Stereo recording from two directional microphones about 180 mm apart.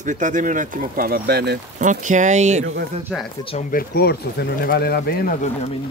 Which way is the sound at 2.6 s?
85° right.